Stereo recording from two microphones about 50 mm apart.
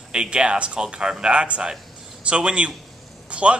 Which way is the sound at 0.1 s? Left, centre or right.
Centre.